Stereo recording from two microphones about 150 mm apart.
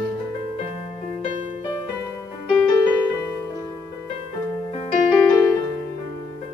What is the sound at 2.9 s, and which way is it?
Music, 15° left (ahead or behind).